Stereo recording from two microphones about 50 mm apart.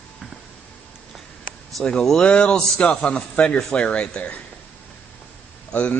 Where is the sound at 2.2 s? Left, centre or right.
Left.